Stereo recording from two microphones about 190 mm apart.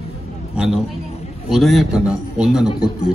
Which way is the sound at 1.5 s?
Centre (ahead or behind).